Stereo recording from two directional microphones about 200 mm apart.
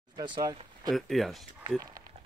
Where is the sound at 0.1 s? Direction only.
20° right (ahead or behind).